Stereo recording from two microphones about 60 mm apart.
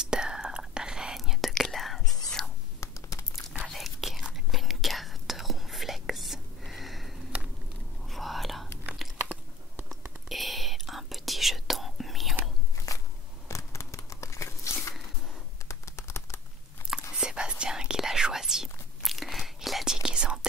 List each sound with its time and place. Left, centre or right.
0.0 s whispering: centre
2.8 s tearing: left
3.6 s whispering: centre
9.2 s a sound: right
10.2 s whispering: centre
12.7 s a sound: left
13.5 s scissors: left
15.7 s typing: left
17.1 s whispering: centre